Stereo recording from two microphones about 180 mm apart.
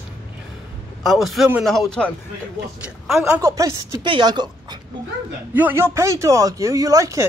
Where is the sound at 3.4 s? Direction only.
15° right (ahead or behind).